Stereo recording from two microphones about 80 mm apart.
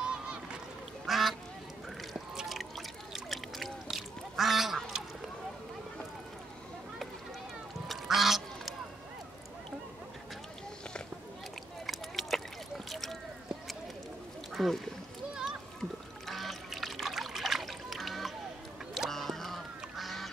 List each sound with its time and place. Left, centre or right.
0.0 s rowboat: centre
1.0 s duck: centre
2.1 s drip: centre
3.1 s a sound: centre
3.9 s duck: centre
7.9 s duck: centre
11.8 s a sound: centre
14.5 s a sound: centre
15.8 s trickle: centre
18.9 s duck: centre